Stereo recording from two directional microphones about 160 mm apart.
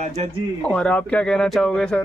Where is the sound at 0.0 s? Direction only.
45° right (ahead or behind).